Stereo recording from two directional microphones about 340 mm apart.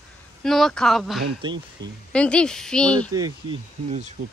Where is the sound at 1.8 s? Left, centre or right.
Centre.